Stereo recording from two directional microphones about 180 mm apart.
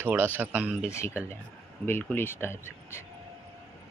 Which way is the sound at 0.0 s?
10° right (ahead or behind).